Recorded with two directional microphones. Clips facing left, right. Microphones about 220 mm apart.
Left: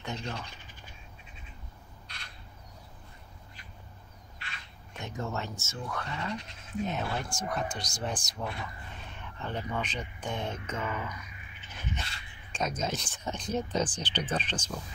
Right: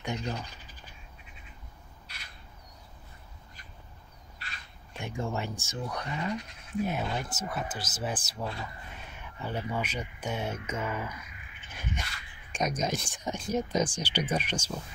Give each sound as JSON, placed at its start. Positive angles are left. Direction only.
{"t": 0.0, "sound": "speech", "side_deg": -15}
{"t": 4.4, "sound": "crow", "side_deg": -40}
{"t": 5.0, "sound": "speech", "side_deg": -15}
{"t": 10.9, "sound": "speech", "side_deg": -20}
{"t": 12.5, "sound": "speech", "side_deg": -15}